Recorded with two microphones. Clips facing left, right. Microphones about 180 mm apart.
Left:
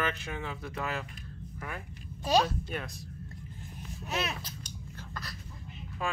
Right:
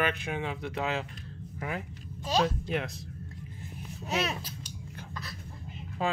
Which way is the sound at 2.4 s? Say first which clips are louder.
Right 5 dB; 90° right.